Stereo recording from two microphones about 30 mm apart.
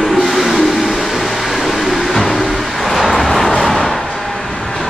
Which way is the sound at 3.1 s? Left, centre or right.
Centre.